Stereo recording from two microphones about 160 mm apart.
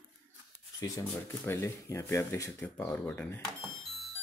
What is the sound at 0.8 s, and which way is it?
Speech, 20° left (ahead or behind).